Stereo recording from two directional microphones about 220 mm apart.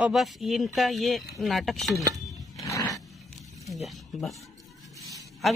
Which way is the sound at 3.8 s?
Centre (ahead or behind).